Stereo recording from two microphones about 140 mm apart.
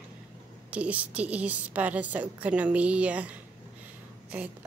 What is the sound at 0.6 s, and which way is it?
A woman's voice, 10° right (ahead or behind).